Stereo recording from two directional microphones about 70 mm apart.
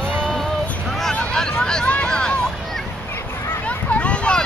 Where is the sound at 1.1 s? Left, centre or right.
Centre.